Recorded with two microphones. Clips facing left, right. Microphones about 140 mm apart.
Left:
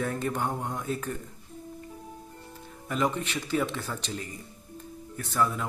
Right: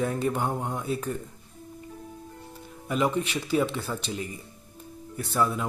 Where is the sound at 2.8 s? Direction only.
15° right (ahead or behind).